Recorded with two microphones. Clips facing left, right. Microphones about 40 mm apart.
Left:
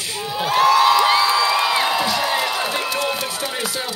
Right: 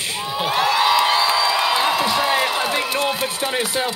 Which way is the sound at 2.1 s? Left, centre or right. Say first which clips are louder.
Right 2 dB; centre.